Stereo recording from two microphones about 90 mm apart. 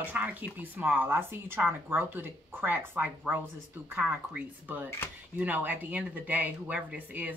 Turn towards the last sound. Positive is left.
turn(degrees=-15)  # may be behind; listen again after turning